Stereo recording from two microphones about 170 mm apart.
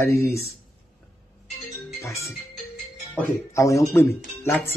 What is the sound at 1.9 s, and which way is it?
Music, 15° left (ahead or behind).